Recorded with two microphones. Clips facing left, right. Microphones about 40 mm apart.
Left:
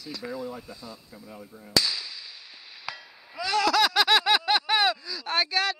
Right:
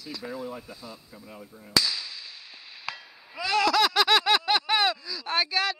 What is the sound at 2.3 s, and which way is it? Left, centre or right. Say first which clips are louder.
Chop: right 1 dB; right.